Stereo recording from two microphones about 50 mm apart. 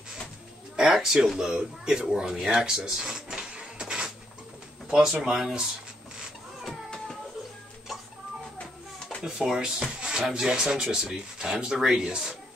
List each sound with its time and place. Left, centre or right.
0.7 s speech: centre
9.2 s speech: centre